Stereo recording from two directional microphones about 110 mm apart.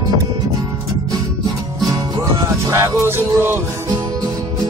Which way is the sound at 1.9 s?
35° right (ahead or behind).